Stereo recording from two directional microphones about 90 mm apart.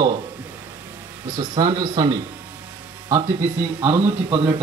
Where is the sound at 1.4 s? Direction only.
55° right (ahead or behind).